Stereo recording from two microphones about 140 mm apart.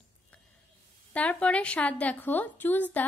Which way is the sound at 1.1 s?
10° left (ahead or behind).